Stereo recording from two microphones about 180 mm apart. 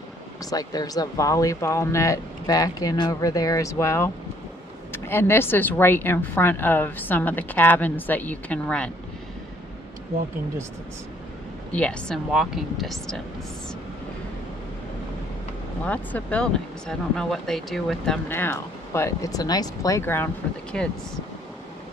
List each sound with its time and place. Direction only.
0.5 s speech: 20° left (ahead or behind)
11.7 s speech: 5° left (ahead or behind)
15.8 s speech: 10° left (ahead or behind)